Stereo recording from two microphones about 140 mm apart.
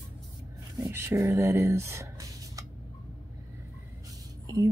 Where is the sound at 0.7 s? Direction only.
25° right (ahead or behind).